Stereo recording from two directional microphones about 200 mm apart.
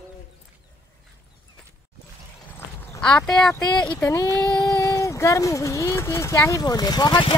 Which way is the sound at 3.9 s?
15° left (ahead or behind).